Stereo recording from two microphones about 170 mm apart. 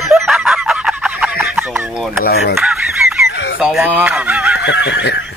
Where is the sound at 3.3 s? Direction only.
90° left.